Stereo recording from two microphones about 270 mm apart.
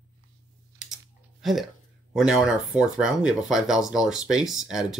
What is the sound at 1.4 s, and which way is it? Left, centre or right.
Speech, centre.